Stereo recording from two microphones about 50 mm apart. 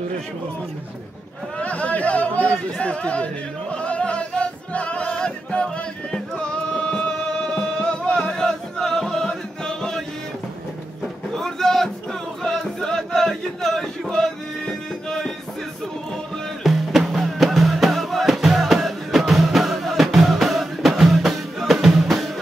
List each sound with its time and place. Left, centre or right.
1.6 s speech: left
3.7 s music: left
11.3 s a sound: centre
14.0 s music: centre
16.6 s music: centre